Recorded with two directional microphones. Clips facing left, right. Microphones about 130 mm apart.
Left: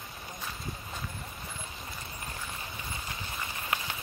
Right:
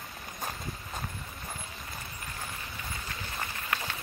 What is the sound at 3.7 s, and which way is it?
Rain on surface, 15° left (ahead or behind).